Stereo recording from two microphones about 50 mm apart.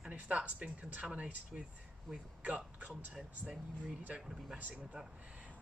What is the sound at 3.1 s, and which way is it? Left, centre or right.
Speech, centre.